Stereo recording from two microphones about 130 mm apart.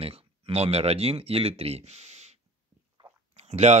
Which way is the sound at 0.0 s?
50° right (ahead or behind).